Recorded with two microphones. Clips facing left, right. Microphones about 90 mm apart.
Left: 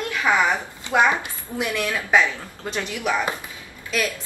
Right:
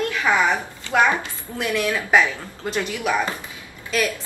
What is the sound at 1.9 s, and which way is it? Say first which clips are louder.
Speech: right 1 dB; 10° right (ahead or behind).